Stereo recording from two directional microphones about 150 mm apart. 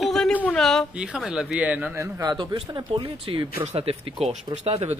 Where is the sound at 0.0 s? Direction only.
5° left (ahead or behind).